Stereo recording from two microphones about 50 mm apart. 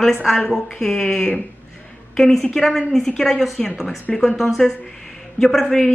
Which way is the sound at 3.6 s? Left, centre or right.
Centre.